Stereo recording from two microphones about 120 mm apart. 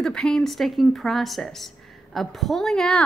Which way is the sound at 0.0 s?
5° left (ahead or behind).